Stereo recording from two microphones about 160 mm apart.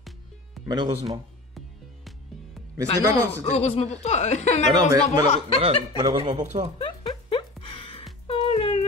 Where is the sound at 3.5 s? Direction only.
40° left (ahead or behind).